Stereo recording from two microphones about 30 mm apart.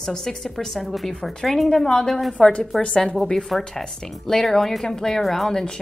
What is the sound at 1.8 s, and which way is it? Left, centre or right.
Speech, centre.